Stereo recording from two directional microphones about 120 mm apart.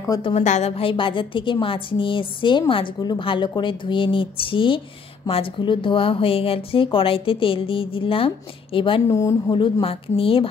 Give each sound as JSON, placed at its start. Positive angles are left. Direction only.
{"t": 0.4, "sound": "a woman's voice", "side_deg": 75}
{"t": 9.0, "sound": "speech", "side_deg": 25}
{"t": 9.5, "sound": "a woman's voice", "side_deg": 45}